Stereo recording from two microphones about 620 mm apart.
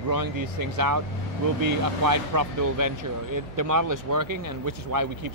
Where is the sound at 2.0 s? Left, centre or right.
Right.